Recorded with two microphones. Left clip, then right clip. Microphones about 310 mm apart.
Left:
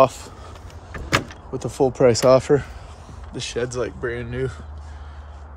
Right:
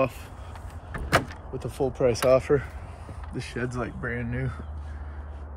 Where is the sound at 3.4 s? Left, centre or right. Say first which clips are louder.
Left 8 dB; centre.